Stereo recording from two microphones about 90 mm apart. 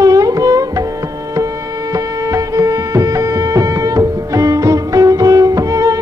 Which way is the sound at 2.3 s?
40° right (ahead or behind).